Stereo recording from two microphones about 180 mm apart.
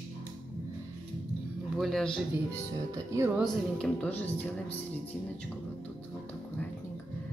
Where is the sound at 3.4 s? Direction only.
5° left (ahead or behind).